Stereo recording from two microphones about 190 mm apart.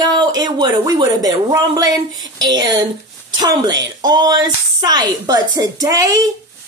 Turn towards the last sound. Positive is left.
turn(degrees=-20)  # may be behind; listen again after turning